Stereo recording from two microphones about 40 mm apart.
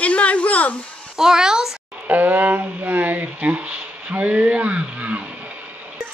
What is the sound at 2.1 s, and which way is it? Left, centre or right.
Speech, right.